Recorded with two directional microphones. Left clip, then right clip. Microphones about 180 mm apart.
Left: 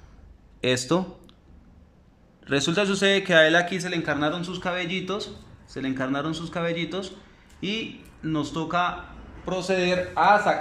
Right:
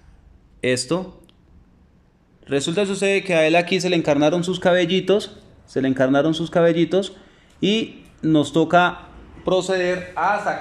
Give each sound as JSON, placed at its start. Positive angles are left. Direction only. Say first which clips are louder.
{"t": 0.6, "sound": "speech", "louder": "right 2 dB", "side_deg": -5}
{"t": 2.4, "sound": "a man's voice", "louder": "right 2 dB", "side_deg": -5}
{"t": 9.4, "sound": "a man's voice", "louder": "right 7 dB", "side_deg": -20}
{"t": 9.8, "sound": "speech", "louder": "right 1 dB", "side_deg": 0}